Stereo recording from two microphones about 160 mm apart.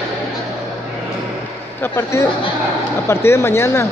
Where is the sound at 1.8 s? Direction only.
15° left (ahead or behind).